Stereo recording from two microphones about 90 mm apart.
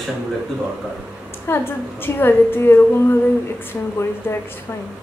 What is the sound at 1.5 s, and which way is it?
A woman's voice, 25° left (ahead or behind).